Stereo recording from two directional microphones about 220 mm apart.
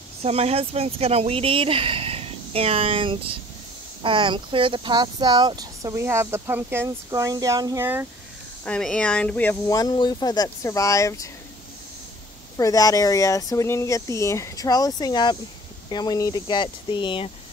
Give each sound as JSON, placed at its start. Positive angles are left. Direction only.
{"t": 0.2, "sound": "speech", "side_deg": -30}
{"t": 8.6, "sound": "speech", "side_deg": 5}
{"t": 12.5, "sound": "speech", "side_deg": 15}